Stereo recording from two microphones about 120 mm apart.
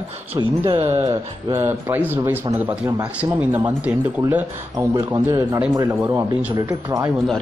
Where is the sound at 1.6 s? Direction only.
20° right (ahead or behind).